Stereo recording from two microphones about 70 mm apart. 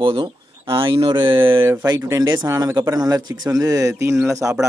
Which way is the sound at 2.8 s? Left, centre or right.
Right.